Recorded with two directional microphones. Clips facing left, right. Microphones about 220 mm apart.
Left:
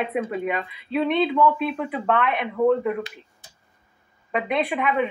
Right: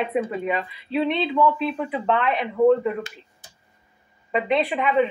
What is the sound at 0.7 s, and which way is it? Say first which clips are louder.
Speech: even; 50° left (ahead or behind).